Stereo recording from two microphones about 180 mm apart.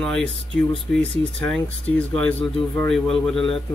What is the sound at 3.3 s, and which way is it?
Speech, 30° left (ahead or behind).